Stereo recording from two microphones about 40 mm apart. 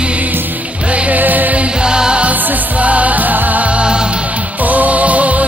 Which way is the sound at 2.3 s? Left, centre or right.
Right.